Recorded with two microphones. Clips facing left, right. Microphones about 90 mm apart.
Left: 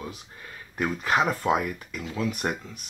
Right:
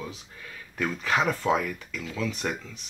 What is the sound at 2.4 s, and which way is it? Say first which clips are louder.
Speech: left 1 dB; 30° left (ahead or behind).